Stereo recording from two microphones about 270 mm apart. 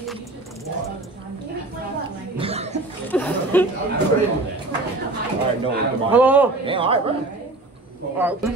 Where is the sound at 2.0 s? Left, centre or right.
Right.